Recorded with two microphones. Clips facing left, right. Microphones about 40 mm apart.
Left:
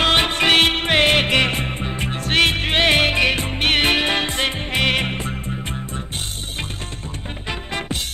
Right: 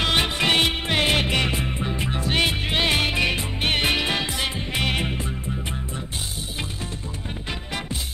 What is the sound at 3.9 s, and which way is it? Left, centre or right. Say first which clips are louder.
Music: left 4 dB; left.